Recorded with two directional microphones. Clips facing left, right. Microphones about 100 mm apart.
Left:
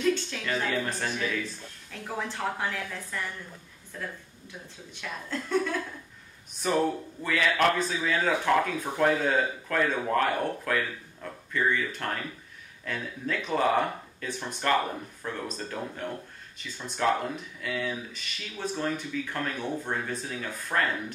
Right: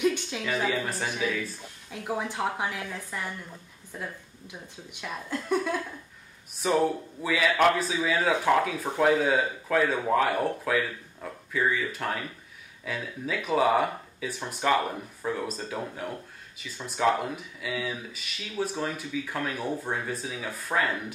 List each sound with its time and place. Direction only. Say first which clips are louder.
0.0 s a woman's voice: right 1 dB; 15° right (ahead or behind)
6.6 s a woman's voice: right 2 dB; 5° right (ahead or behind)